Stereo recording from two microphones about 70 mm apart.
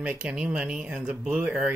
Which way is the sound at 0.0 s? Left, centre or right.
Centre.